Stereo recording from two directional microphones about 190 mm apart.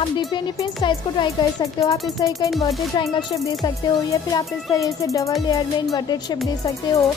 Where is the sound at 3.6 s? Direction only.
20° left (ahead or behind).